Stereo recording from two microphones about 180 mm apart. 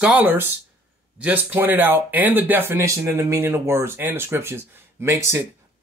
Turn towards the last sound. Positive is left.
turn(degrees=-15)  # may be behind; listen again after turning